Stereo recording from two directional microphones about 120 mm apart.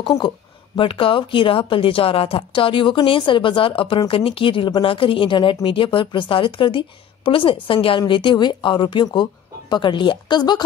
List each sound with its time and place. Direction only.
0.7 s speech: 45° left (ahead or behind)